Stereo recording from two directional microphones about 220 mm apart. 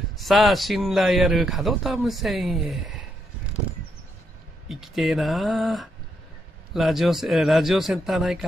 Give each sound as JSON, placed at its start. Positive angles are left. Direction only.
{"t": 0.2, "sound": "speech", "side_deg": 0}
{"t": 4.6, "sound": "speech", "side_deg": 0}